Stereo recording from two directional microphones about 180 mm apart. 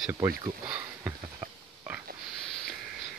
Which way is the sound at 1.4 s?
10° right (ahead or behind).